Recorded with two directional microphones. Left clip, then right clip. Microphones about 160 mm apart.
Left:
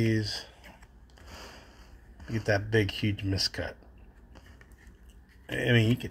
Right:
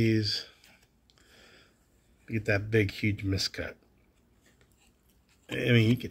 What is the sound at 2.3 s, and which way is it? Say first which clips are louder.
Speech: left 1 dB; 25° right (ahead or behind).